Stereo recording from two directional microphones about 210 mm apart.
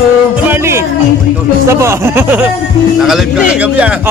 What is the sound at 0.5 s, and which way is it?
Music, 10° right (ahead or behind).